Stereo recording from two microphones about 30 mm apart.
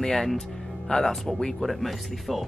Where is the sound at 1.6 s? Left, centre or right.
Centre.